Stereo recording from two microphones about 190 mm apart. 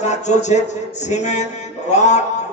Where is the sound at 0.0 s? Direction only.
40° left (ahead or behind).